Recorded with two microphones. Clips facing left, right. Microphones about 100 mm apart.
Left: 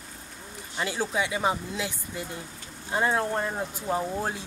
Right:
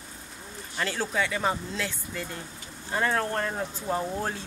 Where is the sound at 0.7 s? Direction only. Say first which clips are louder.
Even; 15° left (ahead or behind).